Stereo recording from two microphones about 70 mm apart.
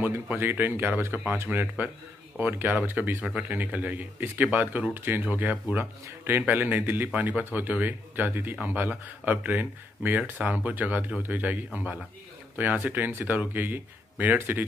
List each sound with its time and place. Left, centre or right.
0.0 s speech: right
5.8 s speech: right